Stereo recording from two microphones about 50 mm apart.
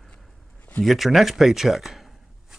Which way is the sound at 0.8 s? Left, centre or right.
Centre.